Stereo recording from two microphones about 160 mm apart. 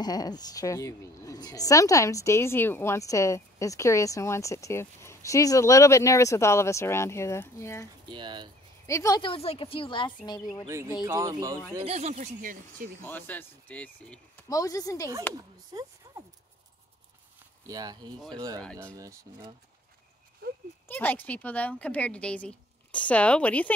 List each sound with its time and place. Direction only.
0.0 s a woman's voice: 25° left (ahead or behind)
8.1 s speech: 30° right (ahead or behind)
8.8 s a woman's voice: 20° left (ahead or behind)
9.2 s a woman's voice: 35° left (ahead or behind)
11.1 s speech: 20° right (ahead or behind)
11.8 s speech: 45° right (ahead or behind); by 12.9 s 60° right (ahead or behind)
13.0 s speech: 10° left (ahead or behind)
14.5 s a woman's voice: 20° left (ahead or behind)
15.3 s a sound: 20° right (ahead or behind)
17.6 s speech: 25° right (ahead or behind)
20.4 s a sound: 70° right (ahead or behind)
20.9 s speech: 10° left (ahead or behind)